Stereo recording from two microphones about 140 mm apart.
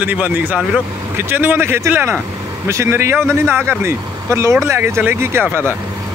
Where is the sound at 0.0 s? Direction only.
10° right (ahead or behind).